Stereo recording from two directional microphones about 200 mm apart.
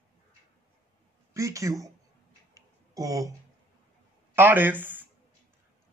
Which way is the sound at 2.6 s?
15° right (ahead or behind).